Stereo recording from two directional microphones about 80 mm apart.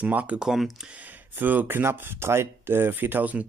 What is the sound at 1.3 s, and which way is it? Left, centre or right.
Speech, right.